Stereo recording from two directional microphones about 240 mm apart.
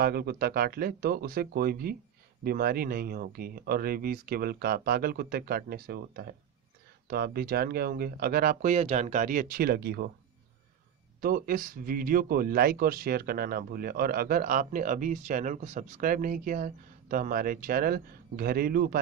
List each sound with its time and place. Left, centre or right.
0.0 s speech: right
11.1 s speech: right